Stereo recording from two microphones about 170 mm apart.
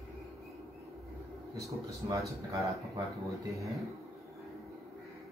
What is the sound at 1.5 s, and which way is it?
Speech, 20° right (ahead or behind).